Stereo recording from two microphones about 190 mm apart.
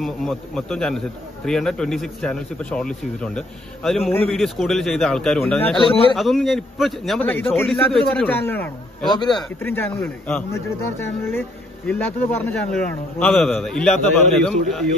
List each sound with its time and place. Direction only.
0.0 s a man's voice: centre (ahead or behind)
5.8 s a man's voice: 30° left (ahead or behind)
6.1 s a man's voice: centre (ahead or behind)
9.1 s a man's voice: 20° left (ahead or behind)
9.6 s speech: 10° left (ahead or behind)